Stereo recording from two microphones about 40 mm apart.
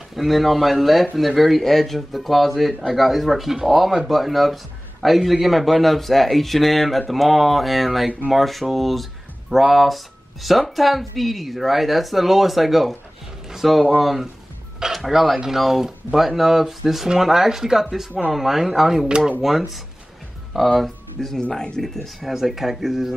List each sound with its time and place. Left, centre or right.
0.1 s speech: centre
19.0 s speech: right
19.4 s speech: centre
21.4 s speech: left
21.8 s speech: centre
22.3 s speech: centre